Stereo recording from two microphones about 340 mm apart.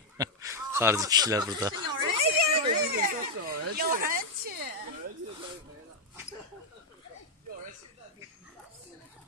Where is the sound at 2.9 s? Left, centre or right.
Right.